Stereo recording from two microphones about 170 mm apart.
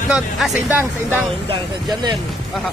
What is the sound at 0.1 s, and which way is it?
Speech, centre (ahead or behind).